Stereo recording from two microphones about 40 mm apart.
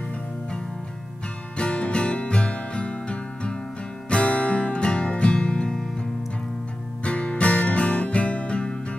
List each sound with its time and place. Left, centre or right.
1.6 s music: left
7.1 s music: left